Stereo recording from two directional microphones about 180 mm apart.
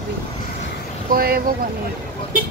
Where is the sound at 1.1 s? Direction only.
55° right (ahead or behind).